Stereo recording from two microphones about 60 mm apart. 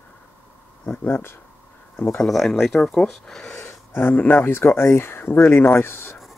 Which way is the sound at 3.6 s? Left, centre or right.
Left.